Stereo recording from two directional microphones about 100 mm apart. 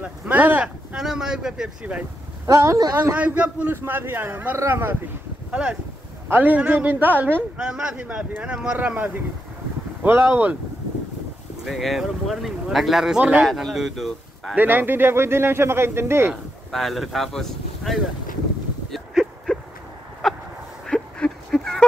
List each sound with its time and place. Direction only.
0.0 s speech: 15° right (ahead or behind)
0.9 s speech: 5° right (ahead or behind)
2.4 s speech: 35° right (ahead or behind)
3.2 s a man's voice: 15° right (ahead or behind)
5.5 s a man's voice: 10° right (ahead or behind)
11.6 s speech: centre (ahead or behind)
14.5 s a man's voice: 20° right (ahead or behind)
16.7 s speech: centre (ahead or behind)
18.9 s a sound: centre (ahead or behind)